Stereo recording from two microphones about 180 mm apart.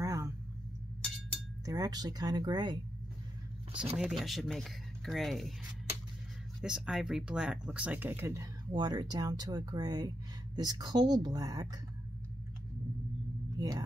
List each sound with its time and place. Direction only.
0.0 s a sound: 20° right (ahead or behind)
1.7 s speech: 20° right (ahead or behind)
4.0 s speech: centre (ahead or behind)
6.6 s speech: 5° right (ahead or behind); by 11.7 s 20° right (ahead or behind)
13.6 s speech: 20° right (ahead or behind)